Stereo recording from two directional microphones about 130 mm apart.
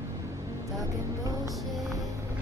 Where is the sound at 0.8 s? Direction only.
25° right (ahead or behind).